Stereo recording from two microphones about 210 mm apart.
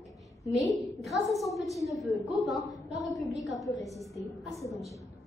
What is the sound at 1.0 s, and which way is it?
A woman's voice, centre (ahead or behind).